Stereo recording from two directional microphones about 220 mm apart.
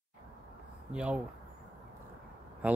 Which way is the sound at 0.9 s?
5° right (ahead or behind).